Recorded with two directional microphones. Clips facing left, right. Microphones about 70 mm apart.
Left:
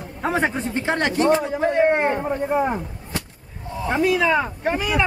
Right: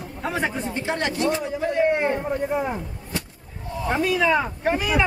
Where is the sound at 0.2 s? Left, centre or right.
Left.